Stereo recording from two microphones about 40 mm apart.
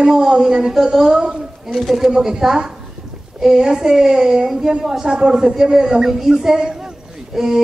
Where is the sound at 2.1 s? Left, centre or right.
Centre.